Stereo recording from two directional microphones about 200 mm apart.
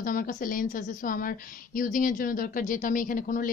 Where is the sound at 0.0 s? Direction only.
45° left (ahead or behind).